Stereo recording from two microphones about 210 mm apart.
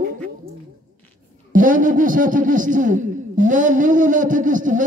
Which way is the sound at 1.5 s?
40° right (ahead or behind).